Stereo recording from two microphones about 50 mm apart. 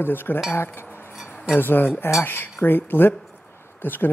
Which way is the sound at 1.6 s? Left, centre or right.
Left.